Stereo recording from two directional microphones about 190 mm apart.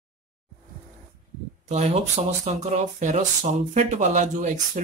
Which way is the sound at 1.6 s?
35° right (ahead or behind).